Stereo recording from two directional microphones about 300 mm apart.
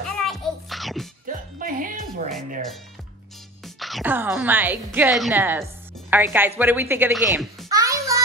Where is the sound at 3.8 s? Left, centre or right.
Centre.